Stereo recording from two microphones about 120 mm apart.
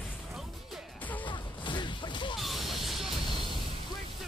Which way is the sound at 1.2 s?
40° left (ahead or behind).